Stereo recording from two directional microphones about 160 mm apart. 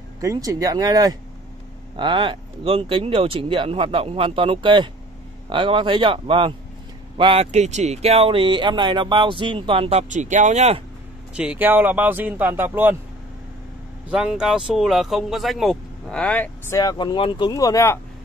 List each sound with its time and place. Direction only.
0.2 s speech: 20° right (ahead or behind); by 10.8 s 45° right (ahead or behind)
11.3 s speech: 10° right (ahead or behind)
14.1 s speech: 5° right (ahead or behind); by 17.9 s 20° left (ahead or behind)